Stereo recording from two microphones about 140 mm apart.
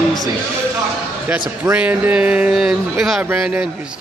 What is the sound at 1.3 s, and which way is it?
Speech, 10° right (ahead or behind).